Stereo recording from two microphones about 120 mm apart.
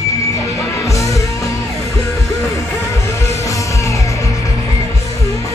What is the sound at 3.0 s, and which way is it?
Music, 25° left (ahead or behind).